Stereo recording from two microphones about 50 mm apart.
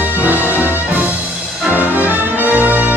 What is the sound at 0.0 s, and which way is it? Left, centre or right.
Music, right.